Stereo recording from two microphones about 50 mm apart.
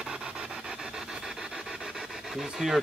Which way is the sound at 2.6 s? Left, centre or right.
Centre.